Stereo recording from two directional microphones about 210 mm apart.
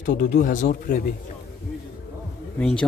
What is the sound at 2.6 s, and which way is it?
Speech, 5° left (ahead or behind).